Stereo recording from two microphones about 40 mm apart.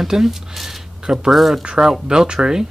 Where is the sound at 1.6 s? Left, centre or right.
Centre.